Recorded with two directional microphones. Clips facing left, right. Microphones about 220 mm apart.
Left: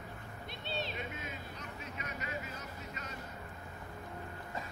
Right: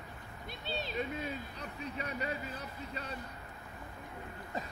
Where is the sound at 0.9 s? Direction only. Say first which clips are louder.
Right 6 dB; 35° right (ahead or behind).